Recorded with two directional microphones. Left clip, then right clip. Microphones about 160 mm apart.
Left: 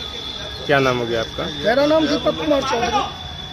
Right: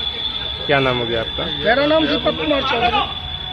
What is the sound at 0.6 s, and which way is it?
Speech, 5° left (ahead or behind).